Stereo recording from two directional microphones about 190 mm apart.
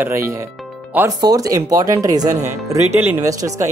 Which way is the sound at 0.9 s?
15° right (ahead or behind).